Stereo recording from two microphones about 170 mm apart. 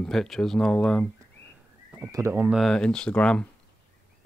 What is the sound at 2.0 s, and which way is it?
Speech, 15° right (ahead or behind).